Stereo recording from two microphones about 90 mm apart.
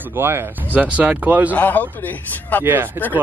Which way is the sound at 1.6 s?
20° left (ahead or behind).